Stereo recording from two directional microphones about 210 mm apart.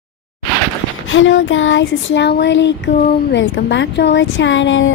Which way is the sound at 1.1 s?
65° left (ahead or behind).